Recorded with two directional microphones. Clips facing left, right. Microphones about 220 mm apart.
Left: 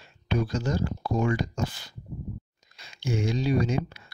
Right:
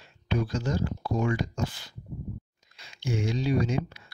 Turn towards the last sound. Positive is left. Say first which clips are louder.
# left 1 dB
turn(degrees=40)  # may be behind; listen again after turning